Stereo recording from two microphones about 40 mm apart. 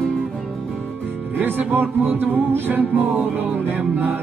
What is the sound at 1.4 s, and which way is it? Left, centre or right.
Music, right.